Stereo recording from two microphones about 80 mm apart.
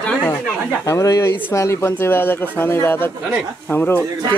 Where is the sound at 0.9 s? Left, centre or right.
Left.